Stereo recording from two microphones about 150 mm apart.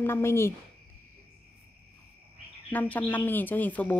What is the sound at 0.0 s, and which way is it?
Speech, 15° left (ahead or behind).